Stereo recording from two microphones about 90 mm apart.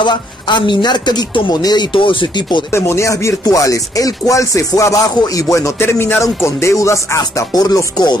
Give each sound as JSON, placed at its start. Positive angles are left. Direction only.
{"t": 0.0, "sound": "speech", "side_deg": 60}
{"t": 1.9, "sound": "speech", "side_deg": 70}
{"t": 2.7, "sound": "speech", "side_deg": 30}